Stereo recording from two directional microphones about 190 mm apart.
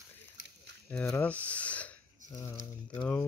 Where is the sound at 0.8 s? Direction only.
10° left (ahead or behind).